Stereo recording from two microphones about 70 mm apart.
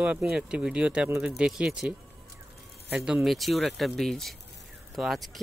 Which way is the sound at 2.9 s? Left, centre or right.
Centre.